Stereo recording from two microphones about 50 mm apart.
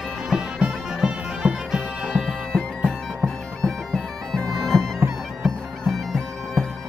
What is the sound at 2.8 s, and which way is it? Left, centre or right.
Bagpipes, centre.